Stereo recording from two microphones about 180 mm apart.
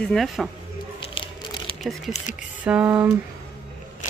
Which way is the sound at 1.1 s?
25° left (ahead or behind).